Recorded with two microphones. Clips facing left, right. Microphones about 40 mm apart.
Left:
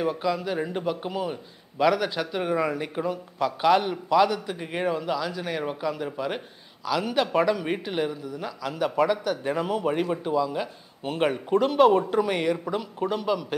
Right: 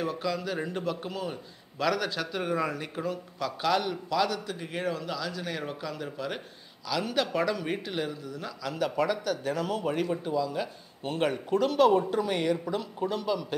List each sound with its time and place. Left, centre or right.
0.0 s a man's voice: centre
12.2 s a man's voice: centre